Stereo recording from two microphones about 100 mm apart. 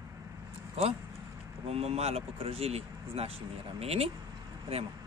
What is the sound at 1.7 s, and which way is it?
Speech, 90° right.